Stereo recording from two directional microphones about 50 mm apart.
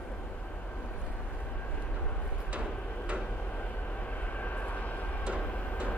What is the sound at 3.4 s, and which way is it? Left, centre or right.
Vehicle, left.